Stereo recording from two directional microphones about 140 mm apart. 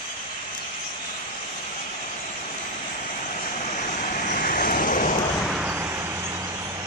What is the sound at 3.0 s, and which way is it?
Vehicle, 65° left (ahead or behind).